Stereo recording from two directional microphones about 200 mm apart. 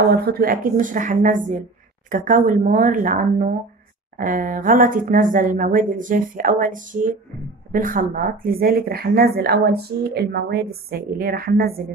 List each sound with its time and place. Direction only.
0.1 s speech: 50° right (ahead or behind)